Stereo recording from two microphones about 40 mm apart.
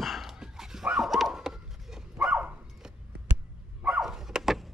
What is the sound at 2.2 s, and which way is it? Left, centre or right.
Dog, right.